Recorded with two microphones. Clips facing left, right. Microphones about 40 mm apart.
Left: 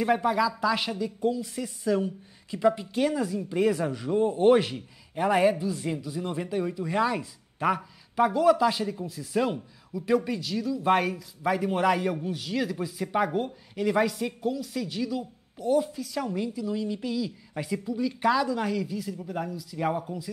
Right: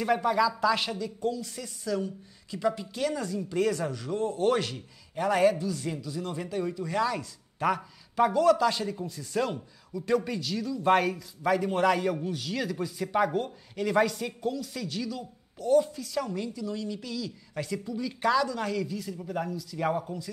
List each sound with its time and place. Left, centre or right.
0.0 s a man's voice: centre
7.5 s a man's voice: centre